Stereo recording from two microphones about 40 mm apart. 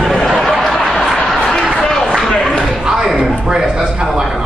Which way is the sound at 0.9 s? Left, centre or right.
Centre.